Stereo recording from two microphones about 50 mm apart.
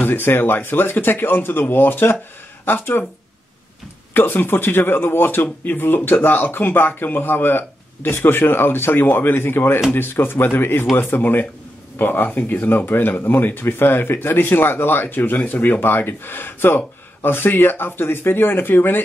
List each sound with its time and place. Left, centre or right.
0.0 s speech: left
4.1 s speech: left
15.8 s speech: left